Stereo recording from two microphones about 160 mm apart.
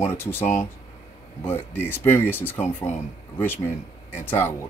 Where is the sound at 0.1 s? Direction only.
15° left (ahead or behind).